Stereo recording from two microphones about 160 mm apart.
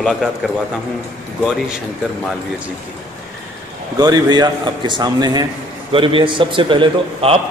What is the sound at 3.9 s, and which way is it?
A man's voice, 25° right (ahead or behind).